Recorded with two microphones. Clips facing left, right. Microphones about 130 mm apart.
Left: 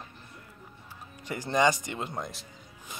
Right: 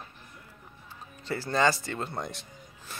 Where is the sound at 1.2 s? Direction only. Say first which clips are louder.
Left 1 dB; 15° left (ahead or behind).